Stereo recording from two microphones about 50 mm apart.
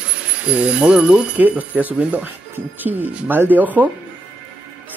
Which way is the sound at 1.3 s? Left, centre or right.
Right.